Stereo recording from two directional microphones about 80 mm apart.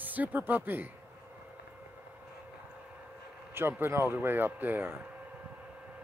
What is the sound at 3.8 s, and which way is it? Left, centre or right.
Speech, right.